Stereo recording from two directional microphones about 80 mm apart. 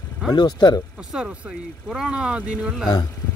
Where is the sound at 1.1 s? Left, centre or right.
Centre.